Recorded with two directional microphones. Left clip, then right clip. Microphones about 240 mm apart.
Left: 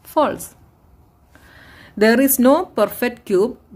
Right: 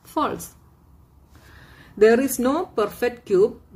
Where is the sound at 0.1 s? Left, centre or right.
Left.